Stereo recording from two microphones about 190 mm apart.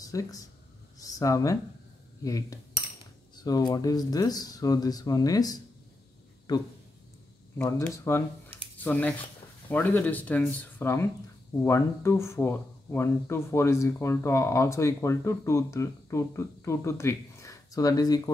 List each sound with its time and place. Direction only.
0.0 s speech: 20° left (ahead or behind)
7.5 s speech: 10° left (ahead or behind)